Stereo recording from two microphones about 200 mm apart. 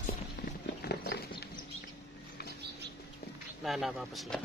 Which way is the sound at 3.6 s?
Centre (ahead or behind).